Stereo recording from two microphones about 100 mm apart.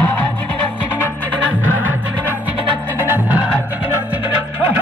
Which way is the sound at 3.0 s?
20° right (ahead or behind).